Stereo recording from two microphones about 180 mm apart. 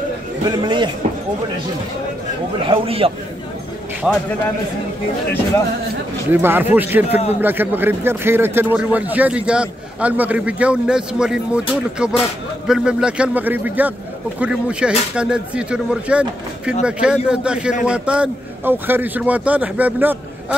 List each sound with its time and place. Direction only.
0.5 s speech: 25° right (ahead or behind)
2.7 s a man's voice: 30° right (ahead or behind)
4.0 s speech: centre (ahead or behind)
6.3 s a man's voice: 10° right (ahead or behind)